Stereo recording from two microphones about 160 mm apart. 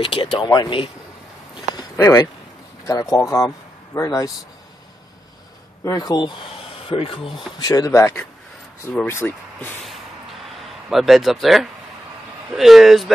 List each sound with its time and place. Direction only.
0.0 s speech: 35° left (ahead or behind)
2.0 s speech: 20° left (ahead or behind)
5.9 s speech: 25° left (ahead or behind)
7.5 s speech: 25° left (ahead or behind)
10.9 s speech: centre (ahead or behind)